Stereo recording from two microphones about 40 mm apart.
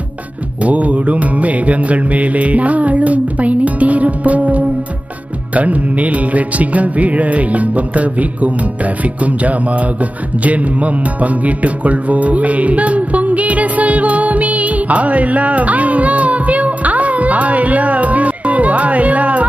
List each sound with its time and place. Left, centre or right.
0.6 s music: right